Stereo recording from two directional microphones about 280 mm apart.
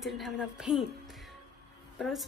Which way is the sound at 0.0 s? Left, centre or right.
Centre.